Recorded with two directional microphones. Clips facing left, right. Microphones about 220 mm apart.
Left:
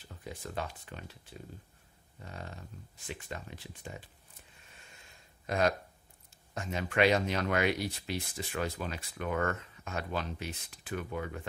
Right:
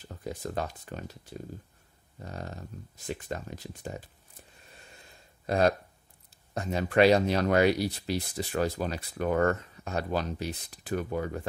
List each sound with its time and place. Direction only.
0.1 s speech: 40° right (ahead or behind)
4.6 s a sound: 35° right (ahead or behind)
6.5 s speech: 35° right (ahead or behind)